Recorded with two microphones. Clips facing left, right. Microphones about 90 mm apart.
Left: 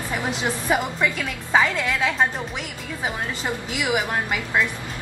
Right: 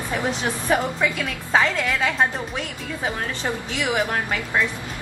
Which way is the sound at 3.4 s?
15° left (ahead or behind).